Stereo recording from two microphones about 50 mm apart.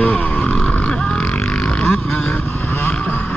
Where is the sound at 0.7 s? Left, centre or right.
Left.